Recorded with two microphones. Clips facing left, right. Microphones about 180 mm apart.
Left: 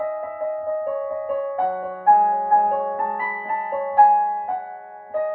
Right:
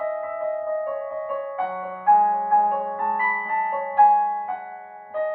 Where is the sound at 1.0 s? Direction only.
50° left (ahead or behind).